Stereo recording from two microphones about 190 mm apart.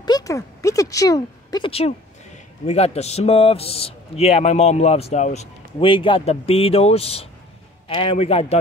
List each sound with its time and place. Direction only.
0.0 s a man's voice: 20° left (ahead or behind)